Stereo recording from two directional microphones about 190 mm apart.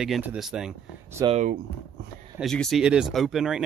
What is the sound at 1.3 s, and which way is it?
Speech, 40° right (ahead or behind).